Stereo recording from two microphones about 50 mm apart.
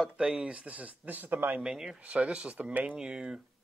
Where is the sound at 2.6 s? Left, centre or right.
Right.